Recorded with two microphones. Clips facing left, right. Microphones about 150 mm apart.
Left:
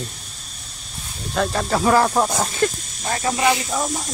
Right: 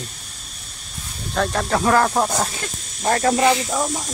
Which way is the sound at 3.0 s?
55° right (ahead or behind).